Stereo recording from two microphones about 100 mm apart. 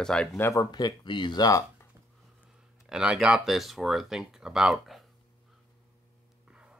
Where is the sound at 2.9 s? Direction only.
10° right (ahead or behind).